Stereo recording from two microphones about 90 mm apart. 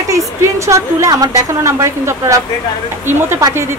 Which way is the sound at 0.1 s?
35° right (ahead or behind).